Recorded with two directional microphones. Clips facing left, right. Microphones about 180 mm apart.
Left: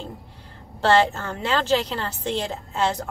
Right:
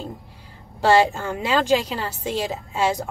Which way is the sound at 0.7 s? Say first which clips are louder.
Right 2 dB; 10° right (ahead or behind).